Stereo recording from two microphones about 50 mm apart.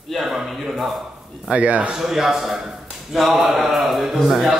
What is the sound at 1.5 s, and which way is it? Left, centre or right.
Speech, right.